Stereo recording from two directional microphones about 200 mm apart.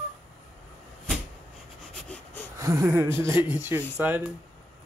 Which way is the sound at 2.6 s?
15° right (ahead or behind).